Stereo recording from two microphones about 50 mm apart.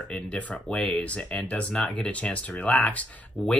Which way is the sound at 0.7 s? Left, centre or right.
Centre.